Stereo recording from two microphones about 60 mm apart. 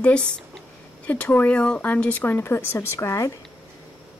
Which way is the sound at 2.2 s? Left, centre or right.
Left.